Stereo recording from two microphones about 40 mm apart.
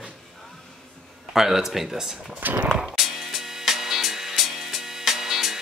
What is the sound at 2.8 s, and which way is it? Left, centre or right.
Music, centre.